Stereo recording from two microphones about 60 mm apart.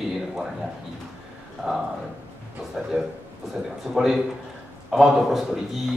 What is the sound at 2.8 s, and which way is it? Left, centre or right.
Speech, centre.